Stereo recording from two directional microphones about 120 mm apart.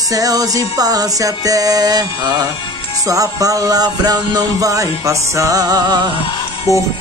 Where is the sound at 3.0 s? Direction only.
30° right (ahead or behind).